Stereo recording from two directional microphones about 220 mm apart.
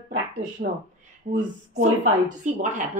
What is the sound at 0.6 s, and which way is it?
Speech, 40° right (ahead or behind).